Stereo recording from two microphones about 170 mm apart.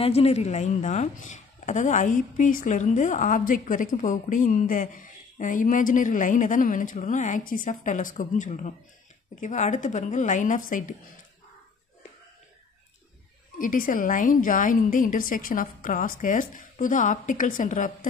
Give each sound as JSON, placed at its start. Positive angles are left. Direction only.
{"t": 0.0, "sound": "a woman's voice", "side_deg": 35}
{"t": 13.6, "sound": "a woman's voice", "side_deg": 55}